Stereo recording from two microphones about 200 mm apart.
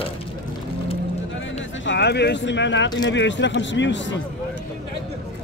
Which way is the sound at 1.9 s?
55° left (ahead or behind).